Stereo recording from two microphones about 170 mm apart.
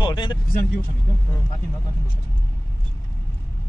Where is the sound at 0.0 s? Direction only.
25° left (ahead or behind).